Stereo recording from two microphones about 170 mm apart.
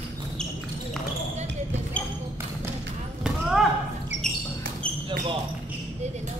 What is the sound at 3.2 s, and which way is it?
Basketball bounce, 5° right (ahead or behind).